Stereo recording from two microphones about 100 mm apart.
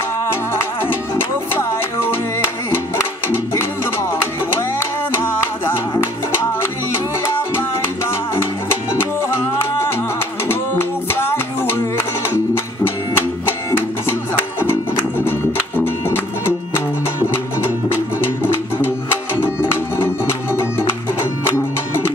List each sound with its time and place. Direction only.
1.1 s music: 20° left (ahead or behind)
3.3 s music: 25° left (ahead or behind)
7.2 s music: 25° left (ahead or behind)
10.5 s music: 20° left (ahead or behind)
13.1 s music: 25° left (ahead or behind)